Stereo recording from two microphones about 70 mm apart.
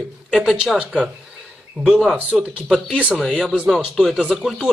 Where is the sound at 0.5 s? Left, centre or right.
Centre.